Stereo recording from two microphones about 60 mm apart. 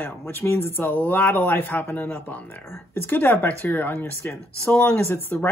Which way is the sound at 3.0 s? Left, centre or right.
Left.